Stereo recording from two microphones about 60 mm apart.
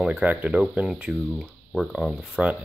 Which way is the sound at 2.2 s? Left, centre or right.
Centre.